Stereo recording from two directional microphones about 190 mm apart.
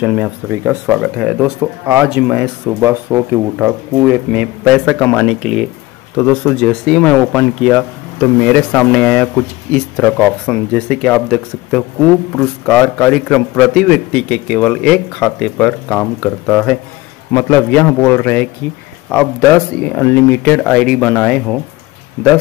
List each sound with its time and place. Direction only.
0.0 s speech: 5° right (ahead or behind)
2.8 s speech: 10° right (ahead or behind)
6.1 s a man's voice: 10° left (ahead or behind)